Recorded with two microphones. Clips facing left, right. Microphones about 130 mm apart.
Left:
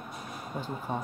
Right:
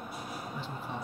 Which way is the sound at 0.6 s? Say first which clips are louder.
Left 9 dB; 45° left (ahead or behind).